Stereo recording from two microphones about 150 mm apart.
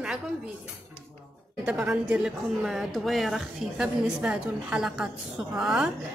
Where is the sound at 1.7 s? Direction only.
10° right (ahead or behind).